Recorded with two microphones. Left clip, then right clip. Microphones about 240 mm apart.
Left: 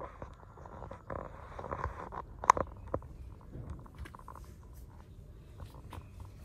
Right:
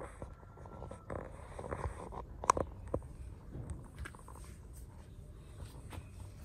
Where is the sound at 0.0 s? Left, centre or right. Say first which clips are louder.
Left 3 dB; right.